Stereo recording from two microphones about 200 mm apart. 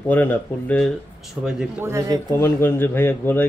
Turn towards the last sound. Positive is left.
turn(degrees=10)  # may be behind; listen again after turning